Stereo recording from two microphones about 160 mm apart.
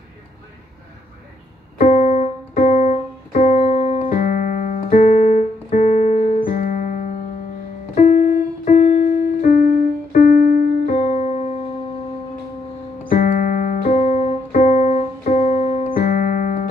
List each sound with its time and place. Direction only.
1.8 s piano: 50° left (ahead or behind)
7.9 s music: 50° left (ahead or behind)
10.1 s keyboard: 50° left (ahead or behind)
13.1 s piano: 60° left (ahead or behind); by 15.9 s 40° left (ahead or behind)
15.9 s music: 60° left (ahead or behind)